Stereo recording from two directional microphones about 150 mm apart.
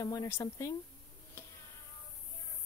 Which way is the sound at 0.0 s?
25° left (ahead or behind).